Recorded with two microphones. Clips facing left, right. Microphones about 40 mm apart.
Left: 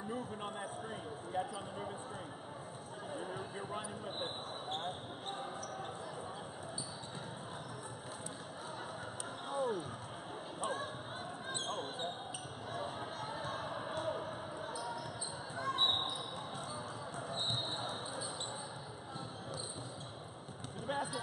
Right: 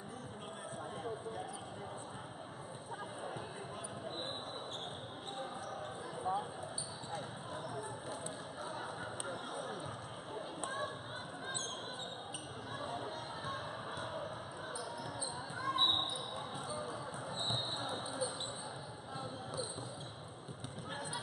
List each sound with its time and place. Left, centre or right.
9.5 s a sound: centre
11.6 s basketball bounce: left
12.7 s music: centre
15.5 s basketball bounce: centre
17.7 s basketball bounce: centre